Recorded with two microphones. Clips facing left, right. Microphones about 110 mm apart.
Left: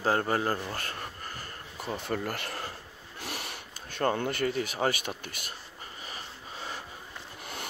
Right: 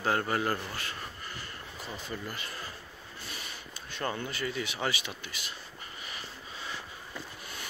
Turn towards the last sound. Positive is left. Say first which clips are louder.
# left 2 dB
turn(degrees=40)  # may be behind; listen again after turning